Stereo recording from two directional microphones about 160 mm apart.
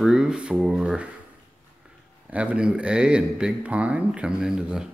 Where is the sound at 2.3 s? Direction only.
10° right (ahead or behind).